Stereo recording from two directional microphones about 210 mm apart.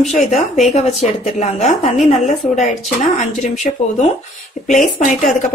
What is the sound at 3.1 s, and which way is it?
Speech, 35° left (ahead or behind).